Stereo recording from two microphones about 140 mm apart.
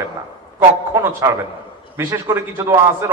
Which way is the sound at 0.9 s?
20° right (ahead or behind).